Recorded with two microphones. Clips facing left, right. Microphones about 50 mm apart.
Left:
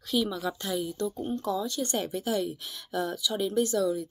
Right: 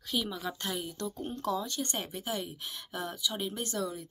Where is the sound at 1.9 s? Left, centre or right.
Right.